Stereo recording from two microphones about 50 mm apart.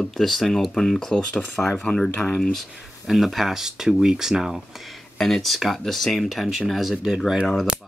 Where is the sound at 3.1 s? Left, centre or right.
Centre.